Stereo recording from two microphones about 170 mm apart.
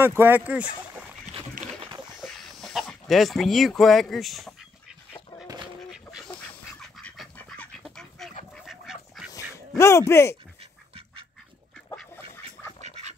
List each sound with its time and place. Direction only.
0.0 s speech: 15° right (ahead or behind)
2.2 s chicken: centre (ahead or behind)
5.9 s duck: centre (ahead or behind)
9.3 s quack: 15° left (ahead or behind)
10.6 s duck: 35° right (ahead or behind)
12.8 s duck: 40° right (ahead or behind)